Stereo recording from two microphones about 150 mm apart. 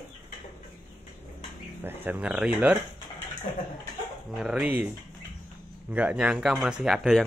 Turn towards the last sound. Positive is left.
turn(degrees=0)  # may be behind; listen again after turning